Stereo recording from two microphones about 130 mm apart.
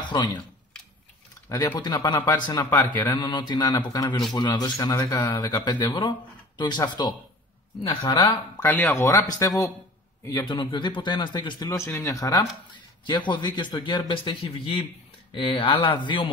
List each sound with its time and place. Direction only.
0.0 s speech: 35° left (ahead or behind)
1.5 s speech: 15° left (ahead or behind)
1.8 s a man's voice: 30° left (ahead or behind)
8.5 s speech: 15° left (ahead or behind)
10.4 s a man's voice: 40° left (ahead or behind)
11.6 s a man's voice: 20° left (ahead or behind); by 16.3 s 40° left (ahead or behind)